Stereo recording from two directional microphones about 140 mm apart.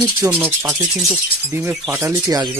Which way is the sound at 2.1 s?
25° right (ahead or behind).